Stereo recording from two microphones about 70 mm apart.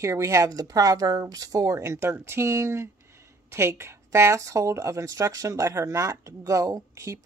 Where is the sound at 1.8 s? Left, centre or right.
Right.